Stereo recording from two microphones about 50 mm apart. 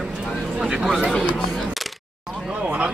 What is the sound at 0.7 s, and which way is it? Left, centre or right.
Speech, centre.